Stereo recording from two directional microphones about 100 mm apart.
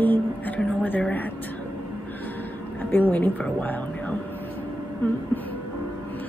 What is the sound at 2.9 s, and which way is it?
A woman's voice, 15° left (ahead or behind).